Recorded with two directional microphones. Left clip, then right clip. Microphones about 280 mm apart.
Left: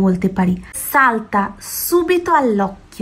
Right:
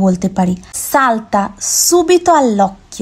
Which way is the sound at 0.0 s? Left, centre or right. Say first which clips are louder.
Right 3 dB; right.